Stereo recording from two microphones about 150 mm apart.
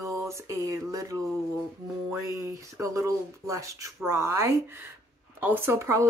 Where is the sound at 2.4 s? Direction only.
20° right (ahead or behind).